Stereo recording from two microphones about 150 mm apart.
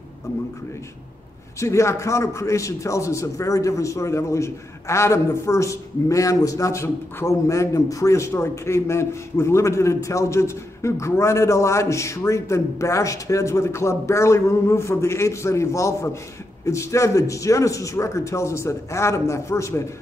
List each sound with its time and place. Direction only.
1.6 s a man's voice: 20° left (ahead or behind)